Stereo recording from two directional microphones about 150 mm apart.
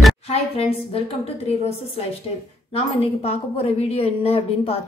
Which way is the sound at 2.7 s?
40° left (ahead or behind).